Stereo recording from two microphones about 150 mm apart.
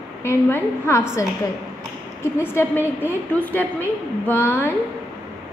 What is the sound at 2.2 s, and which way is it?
A woman's voice, 15° left (ahead or behind).